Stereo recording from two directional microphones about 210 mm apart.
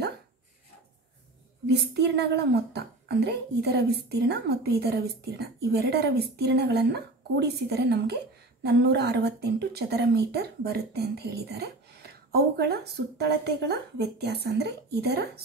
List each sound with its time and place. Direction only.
1.7 s a woman's voice: 50° right (ahead or behind)